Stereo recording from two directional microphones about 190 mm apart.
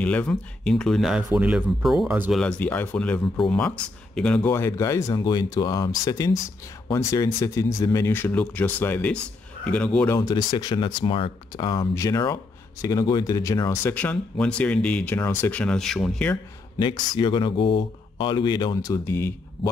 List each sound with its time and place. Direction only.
0.0 s speech: 5° left (ahead or behind)
2.4 s speech: 5° left (ahead or behind)
16.7 s speech: 20° left (ahead or behind)